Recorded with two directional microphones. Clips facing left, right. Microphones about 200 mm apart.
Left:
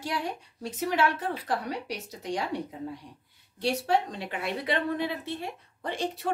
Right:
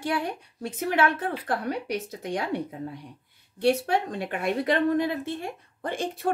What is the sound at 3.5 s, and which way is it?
A woman's voice, 55° right (ahead or behind).